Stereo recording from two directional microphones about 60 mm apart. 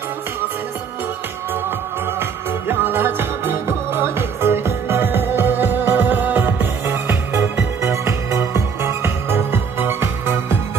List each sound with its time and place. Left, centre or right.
2.7 s music: right
7.8 s music: right